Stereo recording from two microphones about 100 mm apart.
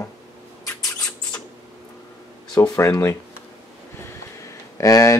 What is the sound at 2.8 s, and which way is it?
Speech, 30° left (ahead or behind).